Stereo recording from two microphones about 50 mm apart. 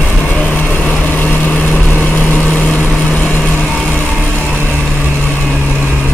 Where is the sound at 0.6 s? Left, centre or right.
Left.